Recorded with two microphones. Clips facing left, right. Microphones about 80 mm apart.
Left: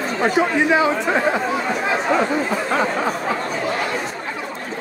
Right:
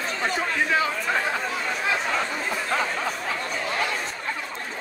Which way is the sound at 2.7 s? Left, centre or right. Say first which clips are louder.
Left 4 dB; left.